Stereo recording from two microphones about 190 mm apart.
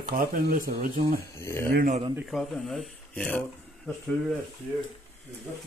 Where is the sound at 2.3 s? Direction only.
Centre (ahead or behind).